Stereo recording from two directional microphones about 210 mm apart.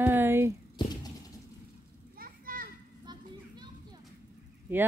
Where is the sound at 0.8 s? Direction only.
20° left (ahead or behind).